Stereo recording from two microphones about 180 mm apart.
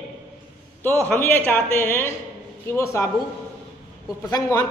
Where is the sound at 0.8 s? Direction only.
10° left (ahead or behind).